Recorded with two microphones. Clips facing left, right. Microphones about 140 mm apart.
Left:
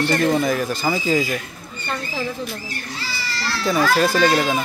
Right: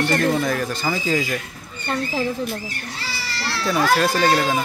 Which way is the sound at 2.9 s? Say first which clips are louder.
Left 3 dB; 65° right (ahead or behind).